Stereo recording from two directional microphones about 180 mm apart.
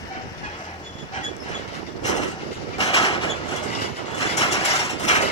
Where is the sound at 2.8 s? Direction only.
30° left (ahead or behind).